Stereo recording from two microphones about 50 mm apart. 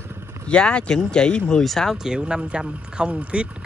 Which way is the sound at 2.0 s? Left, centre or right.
Centre.